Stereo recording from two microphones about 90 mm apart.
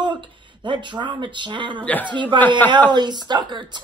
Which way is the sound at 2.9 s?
55° right (ahead or behind).